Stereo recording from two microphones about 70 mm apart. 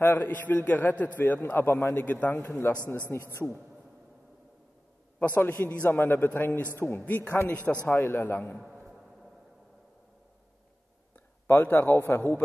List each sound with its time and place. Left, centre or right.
0.0 s a man's voice: left
5.2 s a man's voice: left
8.8 s a sound: centre
11.4 s a man's voice: left